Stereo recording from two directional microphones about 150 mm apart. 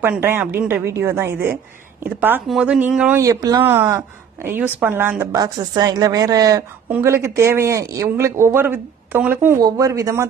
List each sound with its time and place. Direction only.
0.2 s speech: 15° right (ahead or behind)
3.2 s speech: 25° right (ahead or behind)
5.3 s speech: 25° right (ahead or behind)
9.6 s speech: 25° right (ahead or behind)